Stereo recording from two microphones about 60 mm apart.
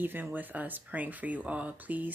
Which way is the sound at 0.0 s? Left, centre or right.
Right.